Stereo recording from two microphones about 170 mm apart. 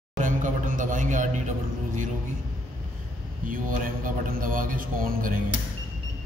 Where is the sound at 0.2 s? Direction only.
50° right (ahead or behind).